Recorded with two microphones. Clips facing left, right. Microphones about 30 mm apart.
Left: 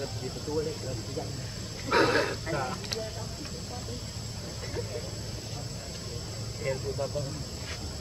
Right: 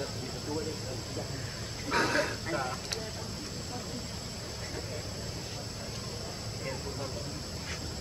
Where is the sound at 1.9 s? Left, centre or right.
Left.